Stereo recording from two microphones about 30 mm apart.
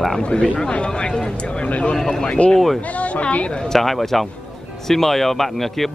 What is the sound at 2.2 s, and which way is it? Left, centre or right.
Speech, left.